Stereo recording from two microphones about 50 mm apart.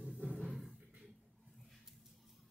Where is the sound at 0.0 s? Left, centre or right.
Centre.